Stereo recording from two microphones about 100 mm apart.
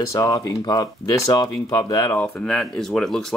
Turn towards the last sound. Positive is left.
turn(degrees=5)  # may be behind; listen again after turning